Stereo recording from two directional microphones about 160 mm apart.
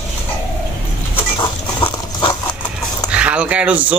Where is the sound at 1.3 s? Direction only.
30° left (ahead or behind).